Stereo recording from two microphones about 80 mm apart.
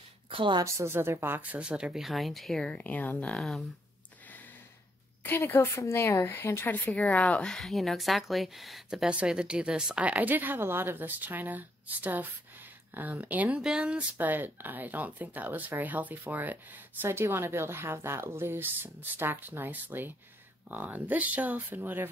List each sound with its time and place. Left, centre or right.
0.4 s a woman's voice: right
0.7 s speech: right; by 2.0 s centre
2.0 s speech: centre
2.7 s a woman's voice: centre
3.3 s speech: centre
5.2 s a woman's voice: left; by 9.1 s centre
9.1 s speech: centre